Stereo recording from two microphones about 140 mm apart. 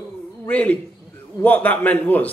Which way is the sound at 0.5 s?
10° left (ahead or behind).